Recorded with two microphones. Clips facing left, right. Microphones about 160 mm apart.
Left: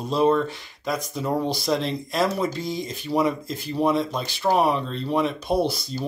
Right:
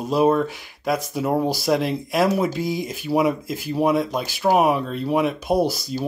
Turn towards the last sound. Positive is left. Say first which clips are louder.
# right 3 dB
turn(degrees=-5)  # may be behind; listen again after turning